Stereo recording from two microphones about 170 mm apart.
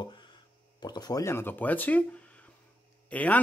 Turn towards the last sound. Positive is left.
turn(degrees=10)  # may be behind; listen again after turning